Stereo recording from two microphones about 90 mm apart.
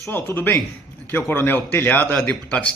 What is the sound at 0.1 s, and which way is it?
A man's voice, 25° left (ahead or behind).